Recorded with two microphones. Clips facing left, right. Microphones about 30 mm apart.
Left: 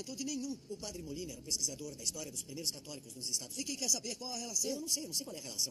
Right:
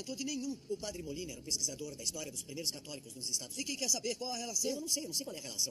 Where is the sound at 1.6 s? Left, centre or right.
Right.